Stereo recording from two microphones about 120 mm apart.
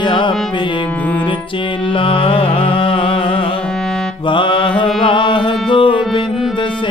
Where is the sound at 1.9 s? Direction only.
45° left (ahead or behind).